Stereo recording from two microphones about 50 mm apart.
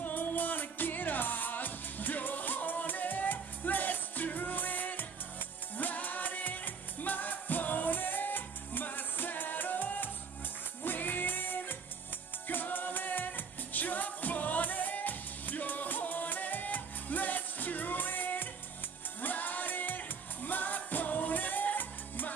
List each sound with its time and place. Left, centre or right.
0.0 s music: left